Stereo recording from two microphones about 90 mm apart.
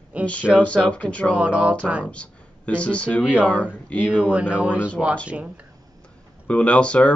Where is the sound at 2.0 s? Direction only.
15° left (ahead or behind).